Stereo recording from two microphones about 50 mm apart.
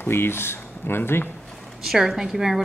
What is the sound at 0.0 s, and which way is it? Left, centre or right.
Speech, left.